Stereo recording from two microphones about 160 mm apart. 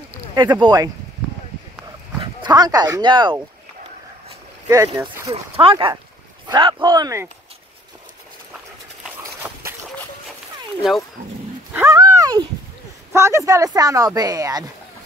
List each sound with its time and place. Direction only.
0.3 s speech: 25° right (ahead or behind)
2.1 s speech: 25° right (ahead or behind)
4.6 s speech: 20° right (ahead or behind)
5.3 s speech: 35° right (ahead or behind)
11.7 s a sound: 15° right (ahead or behind)
13.1 s speech: 15° right (ahead or behind)